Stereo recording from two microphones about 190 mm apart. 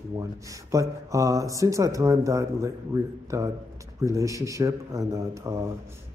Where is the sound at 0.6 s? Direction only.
15° right (ahead or behind).